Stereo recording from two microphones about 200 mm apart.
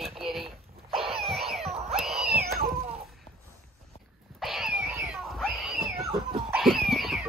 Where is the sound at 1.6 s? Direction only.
30° right (ahead or behind).